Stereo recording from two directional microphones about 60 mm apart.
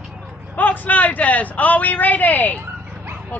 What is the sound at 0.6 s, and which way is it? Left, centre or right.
A man's voice, left.